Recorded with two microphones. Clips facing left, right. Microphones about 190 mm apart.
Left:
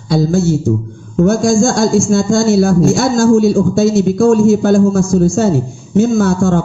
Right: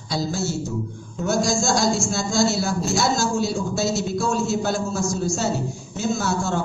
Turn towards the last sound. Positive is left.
turn(degrees=55)  # may be behind; listen again after turning